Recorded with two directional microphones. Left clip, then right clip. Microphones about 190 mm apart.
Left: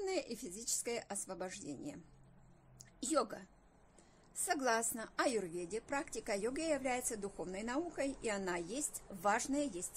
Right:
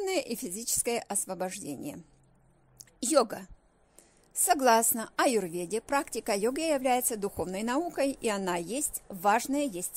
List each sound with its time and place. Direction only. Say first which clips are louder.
0.0 s a woman's voice: right 9 dB; 40° right (ahead or behind)
2.8 s a sound: right 11 dB; 40° right (ahead or behind)
4.5 s a woman's voice: right 12 dB; 40° right (ahead or behind)